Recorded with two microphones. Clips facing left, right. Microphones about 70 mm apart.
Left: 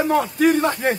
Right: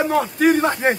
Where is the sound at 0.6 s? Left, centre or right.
Right.